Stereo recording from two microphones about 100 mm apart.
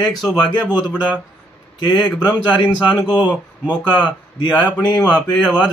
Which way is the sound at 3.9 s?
50° left (ahead or behind).